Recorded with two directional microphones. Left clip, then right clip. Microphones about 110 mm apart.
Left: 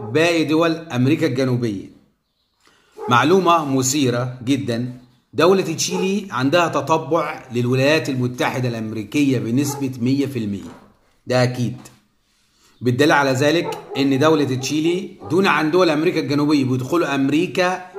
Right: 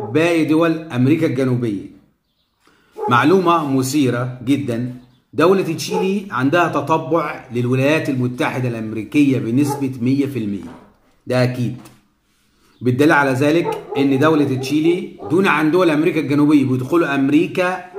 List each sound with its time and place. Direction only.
0.1 s a man's voice: 15° left (ahead or behind)
3.1 s a man's voice: 15° left (ahead or behind)
12.8 s a man's voice: 15° left (ahead or behind)